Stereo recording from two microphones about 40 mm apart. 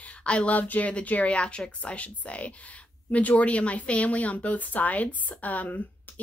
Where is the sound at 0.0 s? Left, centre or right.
Left.